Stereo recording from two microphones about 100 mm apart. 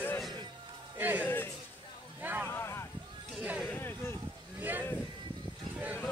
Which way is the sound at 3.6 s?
20° left (ahead or behind).